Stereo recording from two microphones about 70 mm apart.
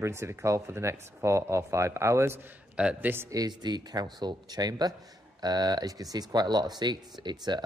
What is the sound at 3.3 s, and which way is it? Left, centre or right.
Speech, right.